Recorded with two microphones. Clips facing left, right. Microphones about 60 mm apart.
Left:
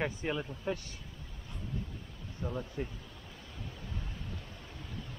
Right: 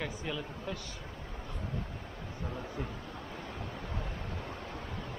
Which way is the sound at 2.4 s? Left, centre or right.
Right.